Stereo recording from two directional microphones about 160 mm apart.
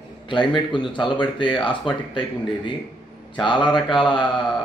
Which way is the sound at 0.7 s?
30° left (ahead or behind).